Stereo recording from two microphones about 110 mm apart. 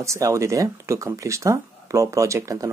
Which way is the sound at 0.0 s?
25° right (ahead or behind).